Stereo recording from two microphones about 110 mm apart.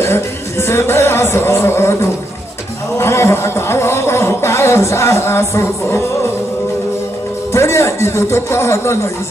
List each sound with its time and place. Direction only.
0.0 s speech: 25° left (ahead or behind)
3.0 s music: 25° left (ahead or behind)
7.5 s music: 25° left (ahead or behind)